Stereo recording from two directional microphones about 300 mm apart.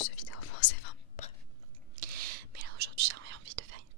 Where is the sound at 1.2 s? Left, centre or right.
Left.